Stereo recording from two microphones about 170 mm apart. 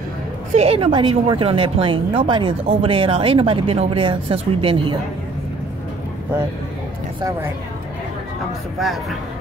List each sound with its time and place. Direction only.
0.6 s a woman's voice: 40° right (ahead or behind)
8.7 s speech: centre (ahead or behind)